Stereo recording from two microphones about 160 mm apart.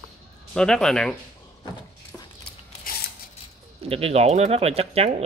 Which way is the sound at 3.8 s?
40° right (ahead or behind).